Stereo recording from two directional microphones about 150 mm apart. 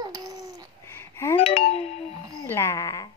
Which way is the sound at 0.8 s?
15° left (ahead or behind).